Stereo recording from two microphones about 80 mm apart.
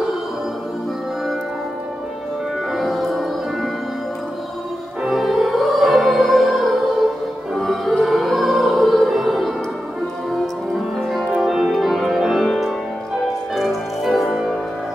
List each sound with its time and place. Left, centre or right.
2.7 s music: centre
5.0 s music: centre